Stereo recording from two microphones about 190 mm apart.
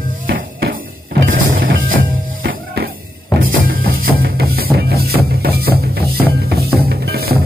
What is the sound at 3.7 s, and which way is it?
Music, 50° right (ahead or behind).